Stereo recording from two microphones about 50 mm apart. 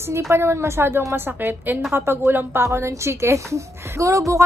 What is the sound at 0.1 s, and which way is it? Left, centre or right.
A woman's voice, right.